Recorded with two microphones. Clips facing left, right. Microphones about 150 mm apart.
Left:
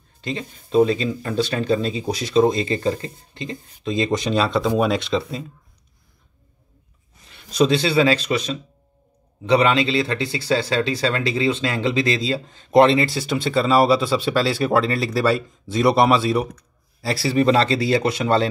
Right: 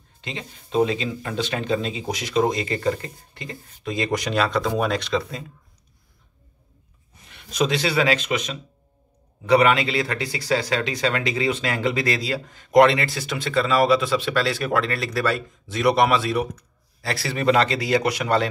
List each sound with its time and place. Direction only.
0.2 s speech: 40° left (ahead or behind)
7.2 s speech: 30° left (ahead or behind)